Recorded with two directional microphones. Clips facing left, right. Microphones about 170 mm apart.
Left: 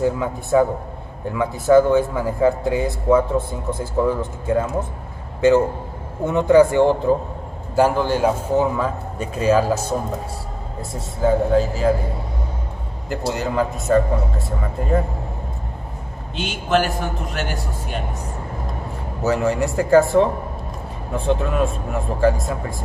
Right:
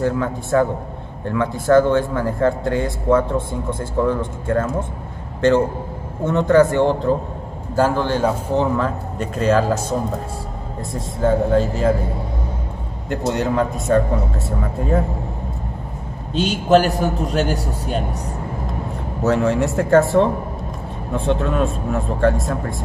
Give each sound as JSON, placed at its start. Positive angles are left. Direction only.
{"t": 0.0, "sound": "a man's voice", "side_deg": 10}
{"t": 6.2, "sound": "a man's voice", "side_deg": 10}
{"t": 10.8, "sound": "speech", "side_deg": 5}
{"t": 13.3, "sound": "speech", "side_deg": 0}
{"t": 16.3, "sound": "a man's voice", "side_deg": -35}
{"t": 19.2, "sound": "speech", "side_deg": 0}